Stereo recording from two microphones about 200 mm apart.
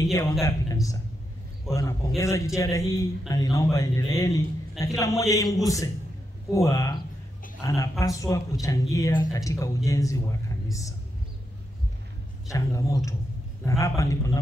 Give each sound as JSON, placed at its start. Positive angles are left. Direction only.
{"t": 0.0, "sound": "speech", "side_deg": 15}
{"t": 12.5, "sound": "speech", "side_deg": 15}